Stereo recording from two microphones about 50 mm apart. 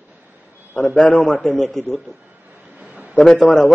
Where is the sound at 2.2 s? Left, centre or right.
Right.